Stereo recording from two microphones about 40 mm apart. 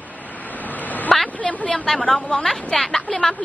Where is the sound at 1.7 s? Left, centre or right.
Centre.